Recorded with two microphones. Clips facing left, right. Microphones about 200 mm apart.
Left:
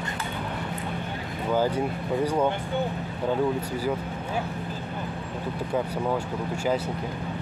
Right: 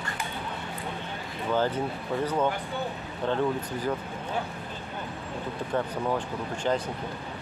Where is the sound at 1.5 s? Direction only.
10° left (ahead or behind).